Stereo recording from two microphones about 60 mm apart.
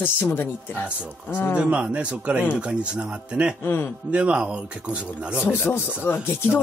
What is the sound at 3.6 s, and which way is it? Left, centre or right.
Speech, left.